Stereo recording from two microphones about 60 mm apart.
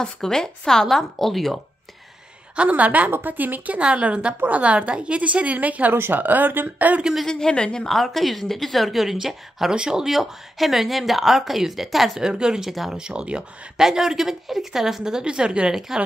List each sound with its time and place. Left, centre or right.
0.0 s speech: centre
2.5 s a woman's voice: right
7.0 s speech: centre
7.2 s a woman's voice: centre
12.3 s speech: centre
12.9 s speech: centre